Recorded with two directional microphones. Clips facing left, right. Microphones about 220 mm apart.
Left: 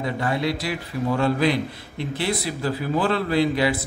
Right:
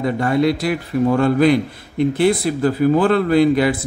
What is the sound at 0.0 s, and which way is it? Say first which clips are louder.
A man's voice: right 8 dB; 50° right (ahead or behind).